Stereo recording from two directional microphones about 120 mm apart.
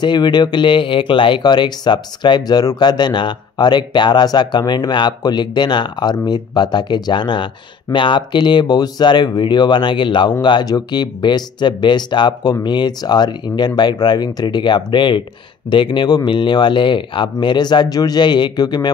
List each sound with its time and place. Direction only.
0.0 s speech: 35° left (ahead or behind)